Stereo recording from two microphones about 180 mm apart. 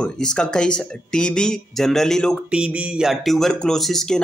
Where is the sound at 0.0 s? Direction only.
5° left (ahead or behind).